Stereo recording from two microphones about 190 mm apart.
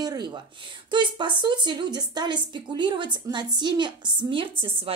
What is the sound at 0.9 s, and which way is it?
Speech, 25° right (ahead or behind).